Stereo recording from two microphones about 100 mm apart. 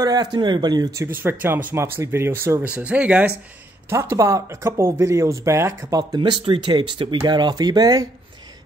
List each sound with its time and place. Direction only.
0.0 s speech: 40° right (ahead or behind)
1.0 s speech: 20° right (ahead or behind)
2.7 s speech: 10° right (ahead or behind)
3.9 s speech: 25° right (ahead or behind)